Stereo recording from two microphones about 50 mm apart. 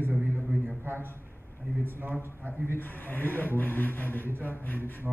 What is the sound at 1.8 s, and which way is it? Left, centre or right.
Speech, right.